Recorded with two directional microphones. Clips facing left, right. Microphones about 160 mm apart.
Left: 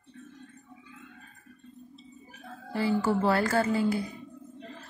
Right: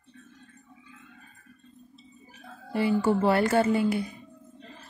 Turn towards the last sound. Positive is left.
turn(degrees=-25)  # may be behind; listen again after turning